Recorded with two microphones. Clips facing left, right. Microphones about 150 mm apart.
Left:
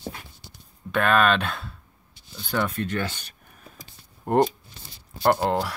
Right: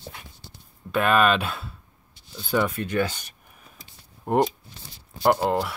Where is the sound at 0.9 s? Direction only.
5° right (ahead or behind).